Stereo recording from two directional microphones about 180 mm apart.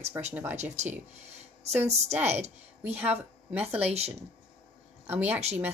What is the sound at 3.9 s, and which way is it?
Speech, 35° right (ahead or behind).